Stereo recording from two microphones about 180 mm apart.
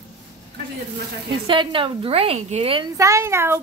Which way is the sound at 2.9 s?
15° right (ahead or behind).